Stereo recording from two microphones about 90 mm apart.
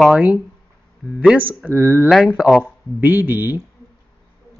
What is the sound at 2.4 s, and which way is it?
Speech, 5° right (ahead or behind).